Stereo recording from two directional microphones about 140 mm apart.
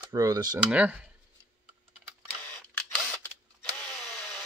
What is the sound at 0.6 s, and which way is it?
Speech, 10° right (ahead or behind).